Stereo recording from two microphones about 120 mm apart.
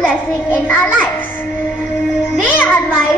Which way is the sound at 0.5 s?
15° left (ahead or behind).